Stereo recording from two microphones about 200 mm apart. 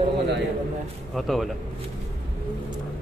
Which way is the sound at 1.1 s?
Centre (ahead or behind).